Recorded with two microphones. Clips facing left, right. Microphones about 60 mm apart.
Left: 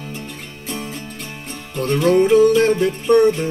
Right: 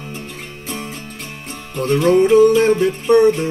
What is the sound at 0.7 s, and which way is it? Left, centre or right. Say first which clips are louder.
Music: left 1 dB; centre.